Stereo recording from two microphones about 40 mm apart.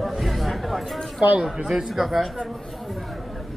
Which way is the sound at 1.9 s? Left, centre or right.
Centre.